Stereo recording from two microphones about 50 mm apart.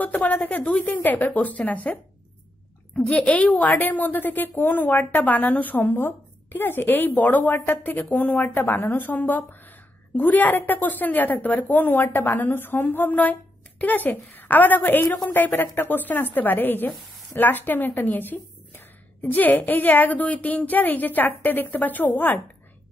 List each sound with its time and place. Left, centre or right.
0.0 s a woman's voice: left
3.2 s a woman's voice: left